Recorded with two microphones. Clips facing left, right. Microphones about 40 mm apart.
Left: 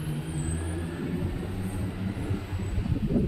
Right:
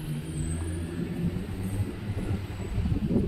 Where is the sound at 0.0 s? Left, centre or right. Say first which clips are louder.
Left 2 dB; centre.